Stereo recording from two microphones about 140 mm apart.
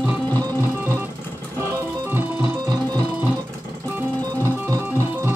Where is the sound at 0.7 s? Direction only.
15° right (ahead or behind).